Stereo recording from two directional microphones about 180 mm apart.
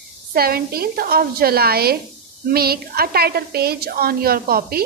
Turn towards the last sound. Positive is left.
turn(degrees=-55)  # may be behind; listen again after turning